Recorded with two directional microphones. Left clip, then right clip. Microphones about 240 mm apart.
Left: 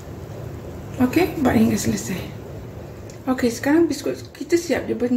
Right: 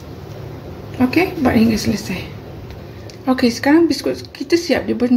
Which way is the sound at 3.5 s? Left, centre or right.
Right.